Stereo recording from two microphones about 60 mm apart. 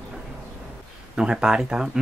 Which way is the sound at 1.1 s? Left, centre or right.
Centre.